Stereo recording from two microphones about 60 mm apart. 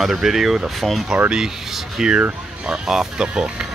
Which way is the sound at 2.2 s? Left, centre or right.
Right.